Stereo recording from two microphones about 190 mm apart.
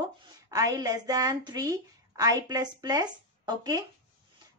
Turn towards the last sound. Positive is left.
turn(degrees=-20)  # may be behind; listen again after turning